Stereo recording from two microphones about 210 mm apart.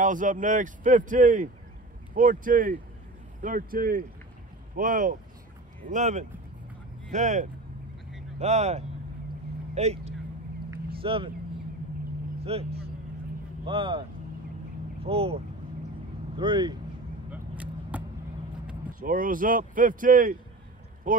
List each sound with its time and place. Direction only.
0.0 s speech: 40° right (ahead or behind)
12.4 s speech: 30° right (ahead or behind)
13.7 s speech: 25° right (ahead or behind)
17.3 s vehicle: 5° right (ahead or behind)
18.9 s speech: 40° right (ahead or behind)